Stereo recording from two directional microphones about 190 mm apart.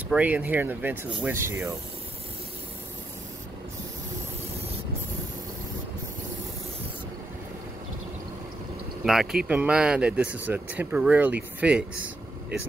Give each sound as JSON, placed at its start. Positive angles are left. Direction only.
{"t": 0.1, "sound": "speech", "side_deg": -5}
{"t": 9.0, "sound": "speech", "side_deg": 0}